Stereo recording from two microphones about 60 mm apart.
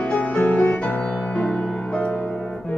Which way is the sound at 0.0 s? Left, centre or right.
Left.